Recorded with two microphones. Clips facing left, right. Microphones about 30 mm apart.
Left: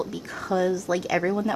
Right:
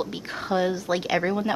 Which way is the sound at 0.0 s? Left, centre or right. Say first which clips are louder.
Right 1 dB; right.